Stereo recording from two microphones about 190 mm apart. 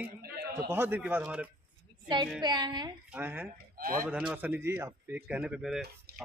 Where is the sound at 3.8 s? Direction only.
50° right (ahead or behind).